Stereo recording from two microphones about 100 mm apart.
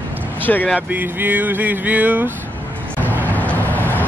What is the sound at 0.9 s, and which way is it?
Speech, 15° right (ahead or behind).